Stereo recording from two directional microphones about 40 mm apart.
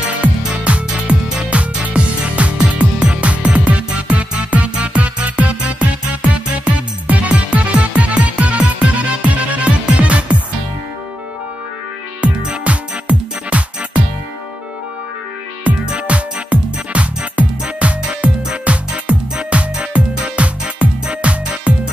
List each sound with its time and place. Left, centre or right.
0.5 s music: right
2.5 s music: right
12.2 s music: right
15.8 s music: right
16.4 s music: right